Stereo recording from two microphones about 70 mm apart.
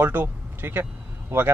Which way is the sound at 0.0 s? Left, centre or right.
Right.